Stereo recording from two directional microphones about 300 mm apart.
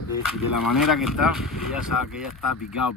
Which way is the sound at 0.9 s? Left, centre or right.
Centre.